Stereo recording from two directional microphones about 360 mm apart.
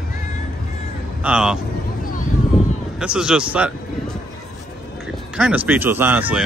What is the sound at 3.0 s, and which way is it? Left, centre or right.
Speech, centre.